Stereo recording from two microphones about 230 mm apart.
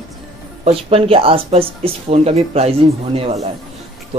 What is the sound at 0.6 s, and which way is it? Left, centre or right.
Speech, right.